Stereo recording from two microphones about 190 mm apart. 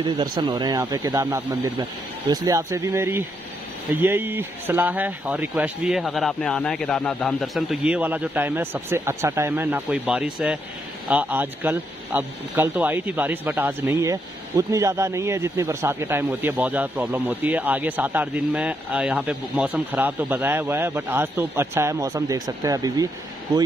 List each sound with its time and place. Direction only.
0.0 s speech: 25° right (ahead or behind)